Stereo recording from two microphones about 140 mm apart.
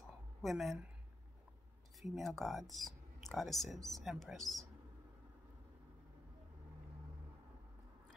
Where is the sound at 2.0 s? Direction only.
Centre (ahead or behind).